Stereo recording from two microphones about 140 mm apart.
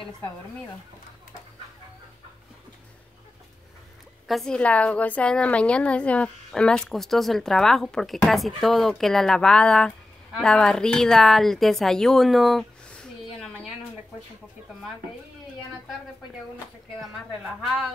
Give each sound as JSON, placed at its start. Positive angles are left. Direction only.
{"t": 4.3, "sound": "a woman's voice", "side_deg": 5}